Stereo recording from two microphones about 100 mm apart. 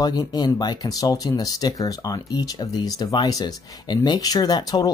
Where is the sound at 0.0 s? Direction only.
40° left (ahead or behind).